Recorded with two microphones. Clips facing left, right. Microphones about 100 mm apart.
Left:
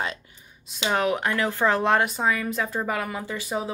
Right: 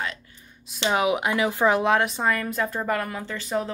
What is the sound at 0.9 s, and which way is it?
Speech, 10° right (ahead or behind).